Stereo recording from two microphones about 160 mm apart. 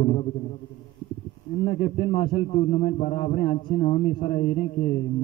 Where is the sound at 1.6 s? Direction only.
35° left (ahead or behind).